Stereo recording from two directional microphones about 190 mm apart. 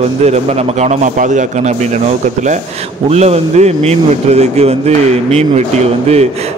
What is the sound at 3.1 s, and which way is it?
A man's voice, 35° right (ahead or behind).